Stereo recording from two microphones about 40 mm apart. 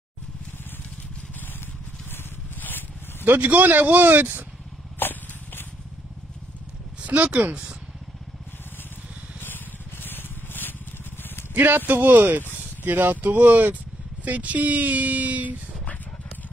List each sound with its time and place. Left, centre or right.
2.6 s a sound: left
3.3 s speech: right
4.9 s a sound: left
7.0 s speech: right
9.4 s vehicle: left
11.5 s speech: right
14.2 s speech: right